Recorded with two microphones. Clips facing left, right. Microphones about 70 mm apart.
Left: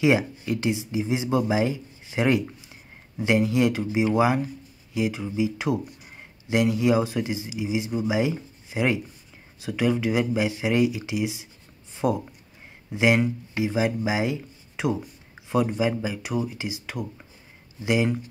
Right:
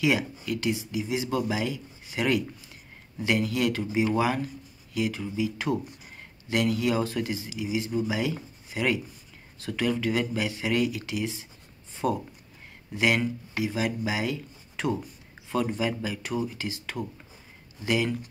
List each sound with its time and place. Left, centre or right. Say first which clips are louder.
0.0 s speech: left 4 dB; left
9.6 s speech: left 4 dB; centre